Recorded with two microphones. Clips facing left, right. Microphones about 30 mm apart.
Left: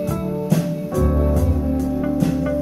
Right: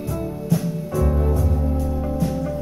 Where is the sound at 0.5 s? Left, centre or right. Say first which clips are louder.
Left 1 dB; left.